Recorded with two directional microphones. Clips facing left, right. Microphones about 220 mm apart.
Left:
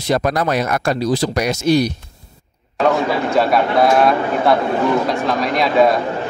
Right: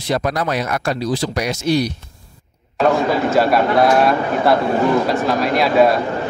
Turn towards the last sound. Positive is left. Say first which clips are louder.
# right 1 dB
turn(degrees=-5)  # may be behind; listen again after turning